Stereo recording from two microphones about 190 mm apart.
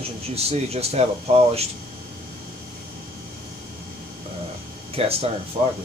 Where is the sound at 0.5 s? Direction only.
35° right (ahead or behind).